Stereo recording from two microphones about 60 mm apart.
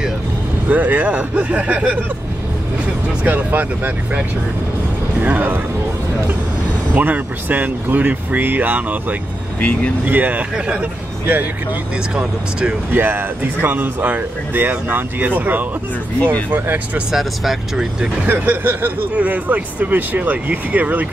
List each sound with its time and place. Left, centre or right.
0.7 s speech: right
3.3 s speech: right
5.2 s speech: right
7.0 s speech: right
9.6 s speech: left
10.0 s a man's voice: right
12.2 s speech: centre
12.9 s speech: right
17.1 s speech: centre
18.2 s speech: right